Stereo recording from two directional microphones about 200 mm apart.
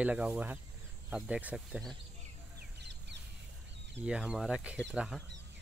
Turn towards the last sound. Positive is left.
turn(degrees=-5)  # may be behind; listen again after turning